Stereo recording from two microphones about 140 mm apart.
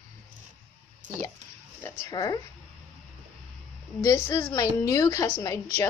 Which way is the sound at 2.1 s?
25° left (ahead or behind).